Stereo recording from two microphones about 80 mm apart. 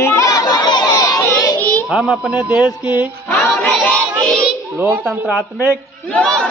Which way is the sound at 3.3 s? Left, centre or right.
Centre.